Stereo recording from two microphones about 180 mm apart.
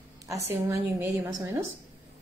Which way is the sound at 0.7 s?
15° right (ahead or behind).